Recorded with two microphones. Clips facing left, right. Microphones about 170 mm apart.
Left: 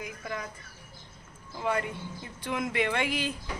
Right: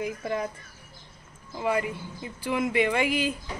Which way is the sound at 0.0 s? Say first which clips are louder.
Right 8 dB; 30° right (ahead or behind).